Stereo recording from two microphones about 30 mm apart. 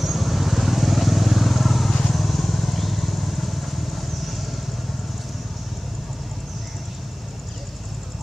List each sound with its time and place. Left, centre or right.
0.0 s vehicle: centre
1.9 s vehicle: centre
2.1 s vehicle: centre